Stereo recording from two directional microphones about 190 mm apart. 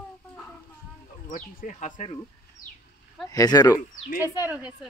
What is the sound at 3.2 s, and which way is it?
Speech, 20° left (ahead or behind).